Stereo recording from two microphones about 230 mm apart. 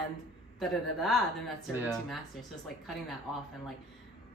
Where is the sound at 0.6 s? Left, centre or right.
Centre.